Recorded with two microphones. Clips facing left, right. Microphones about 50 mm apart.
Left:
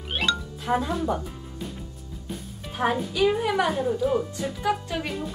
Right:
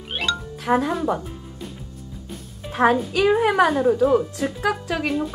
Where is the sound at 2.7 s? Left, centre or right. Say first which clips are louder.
Right 7 dB; right.